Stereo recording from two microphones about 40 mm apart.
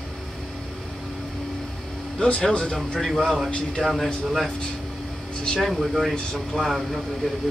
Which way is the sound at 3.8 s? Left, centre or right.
Left.